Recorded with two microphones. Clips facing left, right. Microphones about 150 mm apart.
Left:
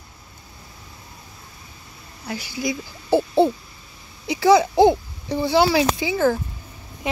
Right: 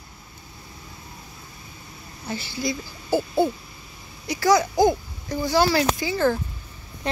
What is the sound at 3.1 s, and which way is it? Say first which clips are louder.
Speech: left 4 dB; 25° left (ahead or behind).